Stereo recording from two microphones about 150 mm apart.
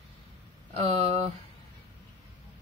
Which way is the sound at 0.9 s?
40° right (ahead or behind).